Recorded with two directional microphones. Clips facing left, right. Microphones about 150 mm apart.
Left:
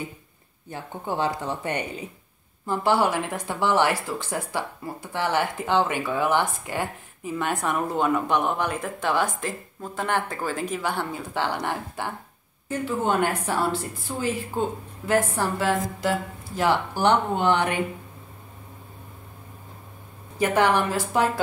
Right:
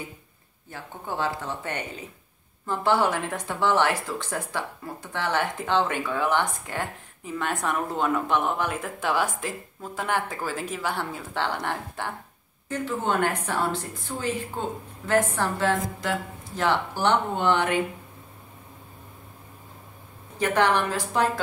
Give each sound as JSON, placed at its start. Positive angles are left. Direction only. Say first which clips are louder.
{"t": 0.7, "sound": "speech", "louder": "left 4 dB", "side_deg": 20}
{"t": 20.3, "sound": "speech", "louder": "left 2 dB", "side_deg": 10}